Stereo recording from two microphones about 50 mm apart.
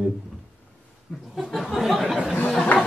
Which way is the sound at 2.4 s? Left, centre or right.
Centre.